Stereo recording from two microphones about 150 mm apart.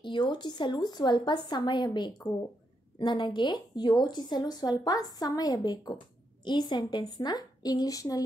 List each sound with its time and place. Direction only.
0.0 s a woman's voice: 30° left (ahead or behind)